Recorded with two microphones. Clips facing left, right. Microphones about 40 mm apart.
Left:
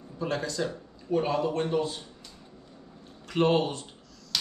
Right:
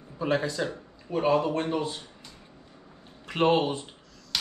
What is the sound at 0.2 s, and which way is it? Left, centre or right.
Speech, right.